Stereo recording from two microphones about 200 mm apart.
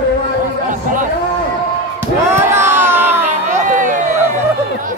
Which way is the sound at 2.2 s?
15° right (ahead or behind).